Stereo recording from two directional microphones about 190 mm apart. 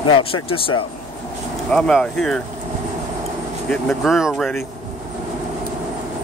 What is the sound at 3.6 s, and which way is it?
Speech, 5° left (ahead or behind).